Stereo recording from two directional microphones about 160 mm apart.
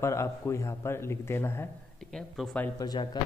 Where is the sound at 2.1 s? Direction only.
5° left (ahead or behind).